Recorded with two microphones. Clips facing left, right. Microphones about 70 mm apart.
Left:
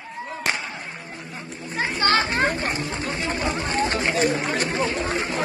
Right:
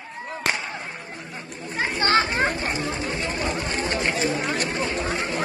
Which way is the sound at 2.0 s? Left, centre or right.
Centre.